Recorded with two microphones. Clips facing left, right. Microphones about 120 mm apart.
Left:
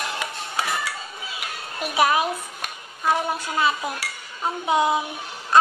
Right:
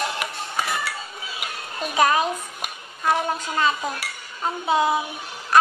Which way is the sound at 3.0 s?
10° left (ahead or behind).